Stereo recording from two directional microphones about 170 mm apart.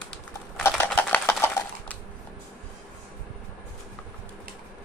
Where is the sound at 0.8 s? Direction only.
10° left (ahead or behind).